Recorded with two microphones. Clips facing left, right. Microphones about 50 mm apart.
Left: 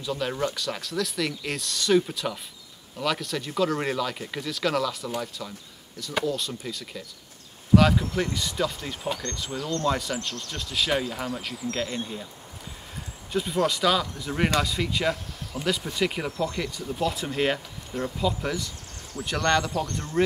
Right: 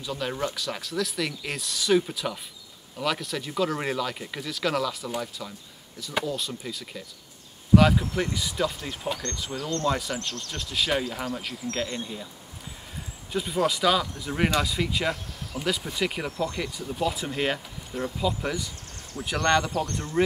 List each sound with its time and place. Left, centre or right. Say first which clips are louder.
0.0 s speech: left 2 dB; centre
13.3 s speech: left 1 dB; centre